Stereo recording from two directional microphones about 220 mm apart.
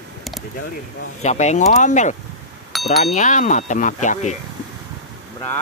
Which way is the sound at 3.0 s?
30° left (ahead or behind).